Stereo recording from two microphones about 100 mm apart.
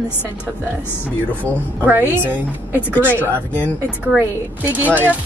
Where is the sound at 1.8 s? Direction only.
20° right (ahead or behind).